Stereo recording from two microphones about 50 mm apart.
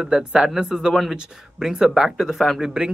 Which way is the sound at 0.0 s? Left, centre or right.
Centre.